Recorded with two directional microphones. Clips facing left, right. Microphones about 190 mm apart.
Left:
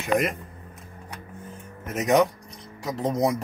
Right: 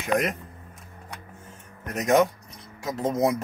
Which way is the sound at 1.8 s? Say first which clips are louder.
Even; centre (ahead or behind).